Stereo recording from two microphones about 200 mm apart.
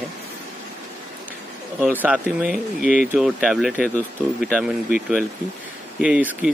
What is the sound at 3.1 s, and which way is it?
Speech, 5° right (ahead or behind).